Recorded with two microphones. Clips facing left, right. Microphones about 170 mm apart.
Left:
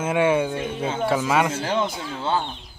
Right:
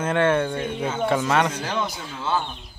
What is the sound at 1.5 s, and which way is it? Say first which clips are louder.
Speech: left 3 dB; 30° left (ahead or behind).